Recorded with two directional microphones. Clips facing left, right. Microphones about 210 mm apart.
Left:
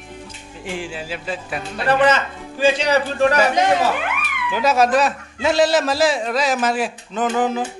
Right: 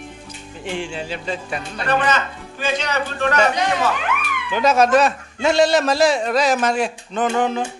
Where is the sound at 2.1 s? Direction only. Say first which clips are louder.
Left 2 dB; 30° left (ahead or behind).